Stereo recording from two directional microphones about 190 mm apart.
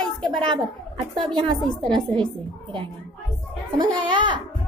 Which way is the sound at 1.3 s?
25° right (ahead or behind).